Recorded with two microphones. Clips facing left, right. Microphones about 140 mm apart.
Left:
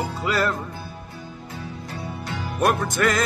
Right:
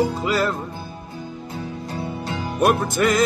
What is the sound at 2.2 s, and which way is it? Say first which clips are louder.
Music: right 4 dB; 20° right (ahead or behind).